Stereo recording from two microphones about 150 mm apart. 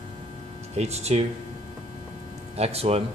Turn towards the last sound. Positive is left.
turn(degrees=-40)  # may be behind; listen again after turning